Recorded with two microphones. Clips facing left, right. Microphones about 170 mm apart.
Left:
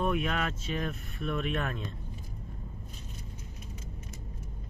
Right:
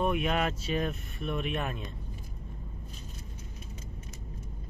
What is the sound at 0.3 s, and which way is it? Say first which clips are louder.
Speech: right 3 dB; 15° right (ahead or behind).